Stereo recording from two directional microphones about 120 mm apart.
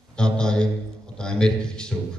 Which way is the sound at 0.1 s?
5° left (ahead or behind).